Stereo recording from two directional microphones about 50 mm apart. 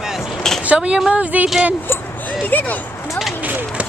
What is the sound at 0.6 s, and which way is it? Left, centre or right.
Speech, right.